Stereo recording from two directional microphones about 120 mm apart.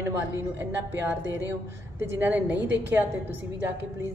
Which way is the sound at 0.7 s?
20° right (ahead or behind).